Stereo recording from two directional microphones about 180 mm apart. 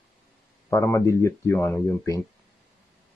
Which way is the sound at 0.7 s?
15° left (ahead or behind).